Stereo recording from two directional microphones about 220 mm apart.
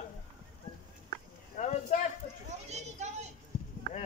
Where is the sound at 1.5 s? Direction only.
35° left (ahead or behind).